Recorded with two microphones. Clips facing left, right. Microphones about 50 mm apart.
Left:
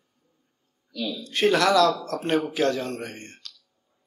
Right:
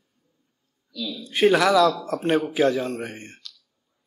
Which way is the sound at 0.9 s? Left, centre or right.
Left.